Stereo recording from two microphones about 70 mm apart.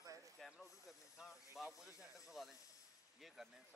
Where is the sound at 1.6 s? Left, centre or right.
Centre.